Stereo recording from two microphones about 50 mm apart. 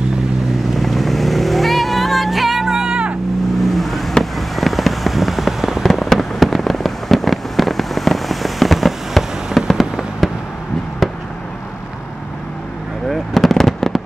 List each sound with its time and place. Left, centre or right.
0.7 s vehicle: centre
3.5 s vehicle: centre
13.1 s fireworks: centre